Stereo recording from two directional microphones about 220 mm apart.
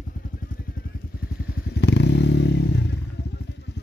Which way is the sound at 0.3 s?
40° left (ahead or behind).